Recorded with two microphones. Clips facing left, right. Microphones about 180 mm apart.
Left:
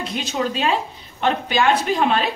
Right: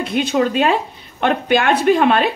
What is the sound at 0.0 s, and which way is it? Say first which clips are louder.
Speech: right 7 dB; 55° right (ahead or behind).